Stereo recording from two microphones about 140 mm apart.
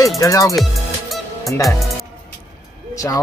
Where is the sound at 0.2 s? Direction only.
25° left (ahead or behind).